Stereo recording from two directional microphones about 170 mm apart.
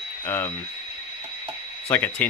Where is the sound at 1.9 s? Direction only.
10° left (ahead or behind).